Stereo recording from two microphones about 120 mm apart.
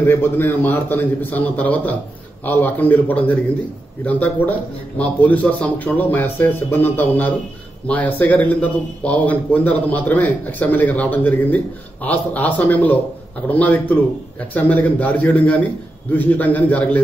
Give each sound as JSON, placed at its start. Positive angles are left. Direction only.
{"t": 0.0, "sound": "speech", "side_deg": 15}